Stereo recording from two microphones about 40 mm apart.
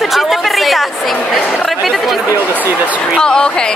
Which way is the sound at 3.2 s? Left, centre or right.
Left.